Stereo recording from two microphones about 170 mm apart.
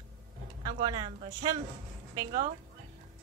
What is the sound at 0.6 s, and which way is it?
Speech, 30° right (ahead or behind).